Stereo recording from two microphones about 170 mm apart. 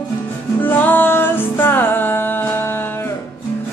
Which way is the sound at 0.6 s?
10° left (ahead or behind).